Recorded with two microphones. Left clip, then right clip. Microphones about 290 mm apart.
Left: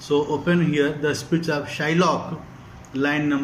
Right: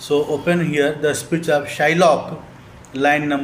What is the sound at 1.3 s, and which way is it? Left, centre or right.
Speech, right.